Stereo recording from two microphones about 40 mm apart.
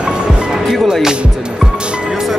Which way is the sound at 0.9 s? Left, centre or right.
Centre.